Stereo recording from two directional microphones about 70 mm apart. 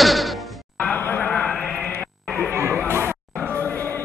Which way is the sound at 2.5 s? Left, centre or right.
Right.